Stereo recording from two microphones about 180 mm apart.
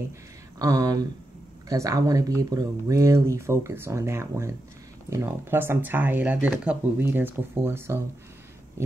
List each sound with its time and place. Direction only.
0.6 s speech: 20° right (ahead or behind)